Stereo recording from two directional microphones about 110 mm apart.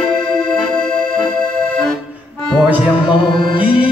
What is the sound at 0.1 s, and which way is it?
Music, 5° left (ahead or behind).